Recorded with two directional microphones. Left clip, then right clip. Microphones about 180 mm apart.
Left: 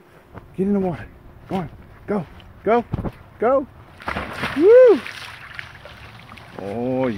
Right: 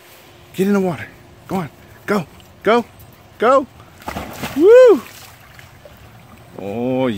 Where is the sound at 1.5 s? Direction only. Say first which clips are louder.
Right 3 dB; 40° right (ahead or behind).